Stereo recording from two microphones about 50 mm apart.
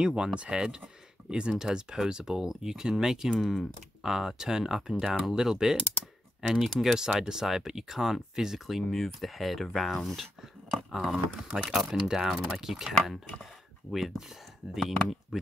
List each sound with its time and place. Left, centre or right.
0.0 s speech: centre